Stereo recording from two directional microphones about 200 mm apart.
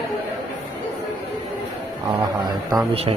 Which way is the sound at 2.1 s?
20° right (ahead or behind).